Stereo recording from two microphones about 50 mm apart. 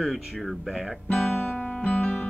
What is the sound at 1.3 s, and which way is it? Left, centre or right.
Music, left.